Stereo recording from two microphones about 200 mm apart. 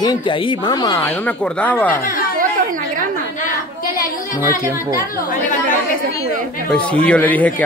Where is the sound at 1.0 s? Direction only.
5° left (ahead or behind).